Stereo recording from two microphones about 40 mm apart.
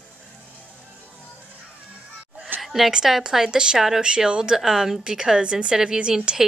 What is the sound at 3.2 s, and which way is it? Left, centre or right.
Speech, centre.